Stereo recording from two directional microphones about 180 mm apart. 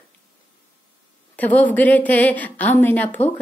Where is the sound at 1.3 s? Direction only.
10° left (ahead or behind).